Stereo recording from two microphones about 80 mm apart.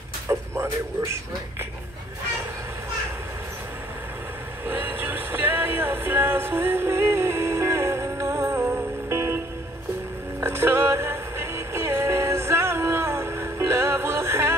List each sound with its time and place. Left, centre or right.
0.3 s a man's voice: right
4.6 s vehicle: right
8.6 s music: right
10.4 s music: right